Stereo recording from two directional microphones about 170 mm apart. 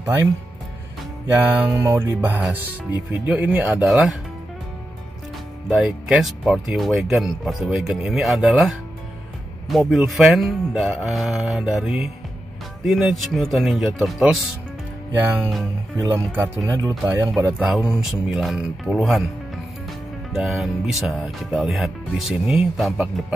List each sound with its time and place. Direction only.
0.0 s speech: 20° right (ahead or behind)
1.4 s speech: 15° right (ahead or behind)
5.7 s speech: 5° right (ahead or behind)
15.1 s speech: 15° right (ahead or behind)